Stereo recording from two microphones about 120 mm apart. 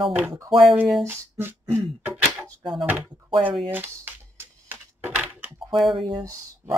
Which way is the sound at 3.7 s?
15° right (ahead or behind).